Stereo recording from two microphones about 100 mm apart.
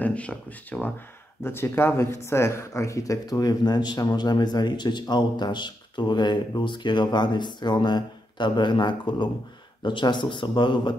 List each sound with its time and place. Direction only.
0.0 s speech: 15° left (ahead or behind); by 11.0 s 50° left (ahead or behind)